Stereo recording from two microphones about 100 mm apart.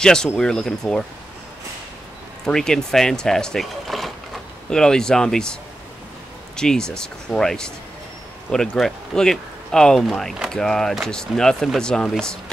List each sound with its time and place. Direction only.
0.0 s speech: 5° left (ahead or behind)
2.4 s speech: 5° left (ahead or behind)